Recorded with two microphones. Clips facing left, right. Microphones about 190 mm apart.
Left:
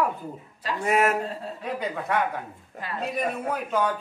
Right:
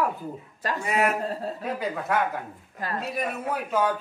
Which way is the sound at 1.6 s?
Centre (ahead or behind).